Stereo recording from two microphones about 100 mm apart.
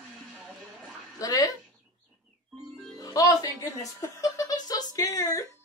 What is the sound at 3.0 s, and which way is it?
Music, 35° left (ahead or behind).